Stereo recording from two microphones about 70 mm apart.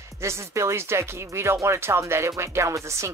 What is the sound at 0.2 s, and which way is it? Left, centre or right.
Speech, right.